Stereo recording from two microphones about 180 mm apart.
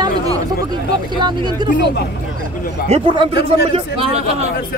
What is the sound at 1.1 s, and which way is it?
Speech, 25° right (ahead or behind).